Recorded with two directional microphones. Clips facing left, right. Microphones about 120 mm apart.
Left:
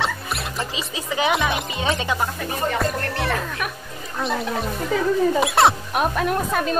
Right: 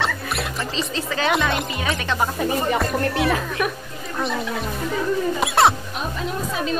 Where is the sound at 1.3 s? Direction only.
Centre (ahead or behind).